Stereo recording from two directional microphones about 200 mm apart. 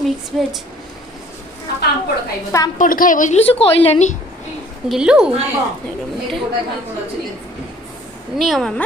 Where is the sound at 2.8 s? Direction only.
45° left (ahead or behind).